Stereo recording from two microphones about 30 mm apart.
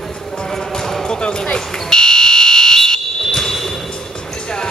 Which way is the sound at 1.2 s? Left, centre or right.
Left.